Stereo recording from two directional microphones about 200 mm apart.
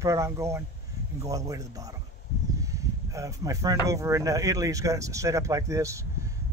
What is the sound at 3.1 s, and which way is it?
Speech, 15° right (ahead or behind).